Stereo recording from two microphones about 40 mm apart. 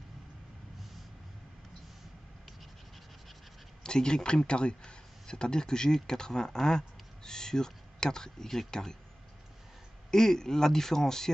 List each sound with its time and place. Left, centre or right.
3.8 s speech: centre
10.1 s speech: centre